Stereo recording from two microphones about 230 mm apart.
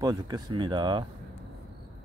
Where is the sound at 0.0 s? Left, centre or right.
Centre.